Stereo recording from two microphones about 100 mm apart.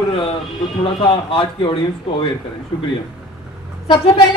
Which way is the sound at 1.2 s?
60° left (ahead or behind).